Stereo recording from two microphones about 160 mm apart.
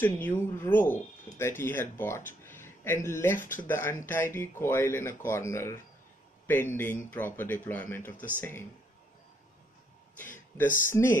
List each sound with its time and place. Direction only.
0.0 s speech: 15° left (ahead or behind)
10.9 s speech: 15° left (ahead or behind)